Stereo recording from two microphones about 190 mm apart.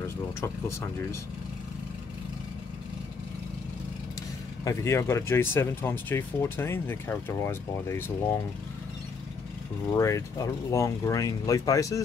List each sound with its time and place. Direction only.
4.6 s speech: 15° left (ahead or behind)
9.9 s speech: 15° left (ahead or behind)